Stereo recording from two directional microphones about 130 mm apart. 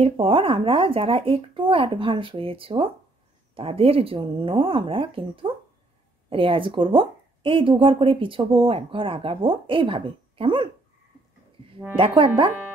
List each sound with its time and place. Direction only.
0.0 s a woman's voice: 45° right (ahead or behind)
12.0 s a woman's voice: 40° right (ahead or behind)